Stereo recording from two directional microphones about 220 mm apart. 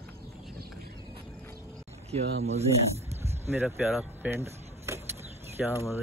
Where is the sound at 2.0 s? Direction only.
30° right (ahead or behind).